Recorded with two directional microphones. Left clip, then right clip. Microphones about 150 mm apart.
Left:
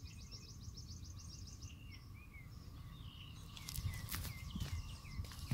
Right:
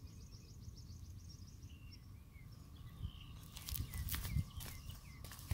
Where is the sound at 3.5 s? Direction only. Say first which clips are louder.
Even; 90° right.